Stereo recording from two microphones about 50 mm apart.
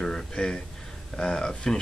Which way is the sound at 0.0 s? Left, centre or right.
Centre.